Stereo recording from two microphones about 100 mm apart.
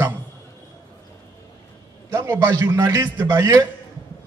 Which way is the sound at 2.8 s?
35° right (ahead or behind).